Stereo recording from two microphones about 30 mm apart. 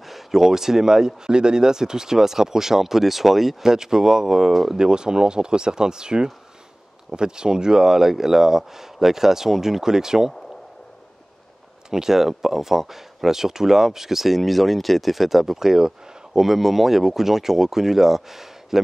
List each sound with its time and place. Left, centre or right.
0.0 s speech: centre
3.6 s speech: centre
11.9 s speech: centre